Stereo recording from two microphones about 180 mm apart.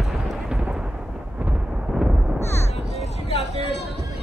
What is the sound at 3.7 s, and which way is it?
Music, 70° left (ahead or behind).